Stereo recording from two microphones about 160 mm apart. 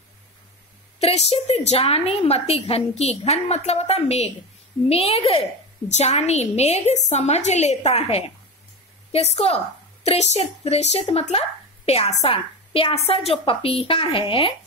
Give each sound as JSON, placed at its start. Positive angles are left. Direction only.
{"t": 0.9, "sound": "a woman's voice", "side_deg": 40}